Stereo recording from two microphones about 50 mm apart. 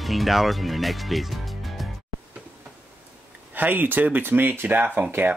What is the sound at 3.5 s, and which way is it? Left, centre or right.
Speech, right.